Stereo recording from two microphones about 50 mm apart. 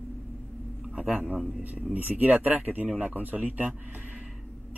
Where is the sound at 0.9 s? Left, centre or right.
Right.